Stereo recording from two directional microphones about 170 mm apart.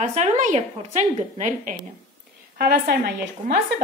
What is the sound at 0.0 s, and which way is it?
A woman's voice, 45° right (ahead or behind).